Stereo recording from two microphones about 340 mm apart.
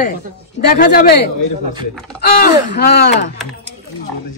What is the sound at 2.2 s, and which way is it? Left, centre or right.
Speech, left.